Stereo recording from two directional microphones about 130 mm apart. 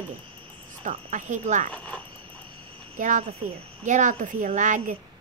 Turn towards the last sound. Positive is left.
turn(degrees=-75)  # may be behind; listen again after turning